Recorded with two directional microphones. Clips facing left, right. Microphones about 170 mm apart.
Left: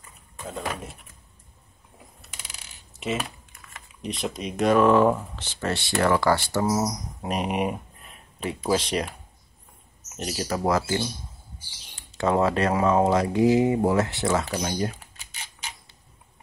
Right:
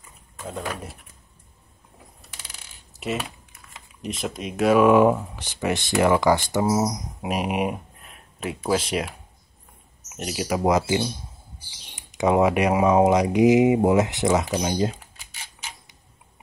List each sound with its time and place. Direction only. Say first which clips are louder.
0.4 s speech: right 1 dB; centre (ahead or behind)
3.0 s speech: even; centre (ahead or behind); by 15.0 s 20° right (ahead or behind)